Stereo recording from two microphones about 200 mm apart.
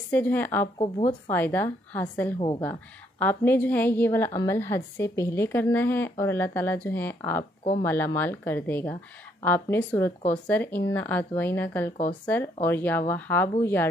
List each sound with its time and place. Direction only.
0.1 s a woman's voice: 10° left (ahead or behind)
0.7 s speech: 20° left (ahead or behind)
1.3 s a woman's voice: 10° left (ahead or behind)